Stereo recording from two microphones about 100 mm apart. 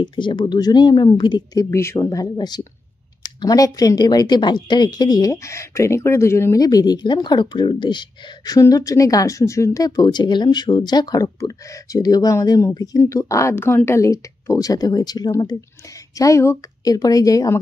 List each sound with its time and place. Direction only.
0.0 s speech: 50° left (ahead or behind); by 6.6 s 25° left (ahead or behind)
6.6 s speech: 40° left (ahead or behind)
8.5 s speech: 35° left (ahead or behind)
16.2 s speech: 30° left (ahead or behind)